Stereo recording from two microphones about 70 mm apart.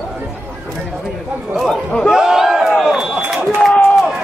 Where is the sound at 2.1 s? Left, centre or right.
Centre.